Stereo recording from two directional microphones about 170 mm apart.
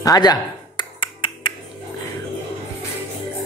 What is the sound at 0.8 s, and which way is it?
Finger snapping, 30° left (ahead or behind).